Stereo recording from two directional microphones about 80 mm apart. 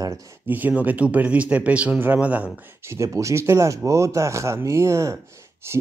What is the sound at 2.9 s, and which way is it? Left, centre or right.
Speech, right.